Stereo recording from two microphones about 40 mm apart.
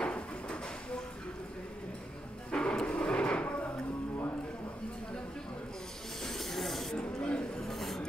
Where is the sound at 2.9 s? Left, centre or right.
Left.